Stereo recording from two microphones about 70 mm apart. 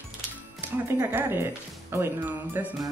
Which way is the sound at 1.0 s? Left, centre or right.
Right.